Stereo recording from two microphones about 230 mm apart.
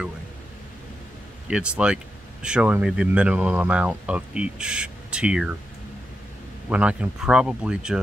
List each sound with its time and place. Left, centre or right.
1.5 s speech: centre
6.7 s speech: centre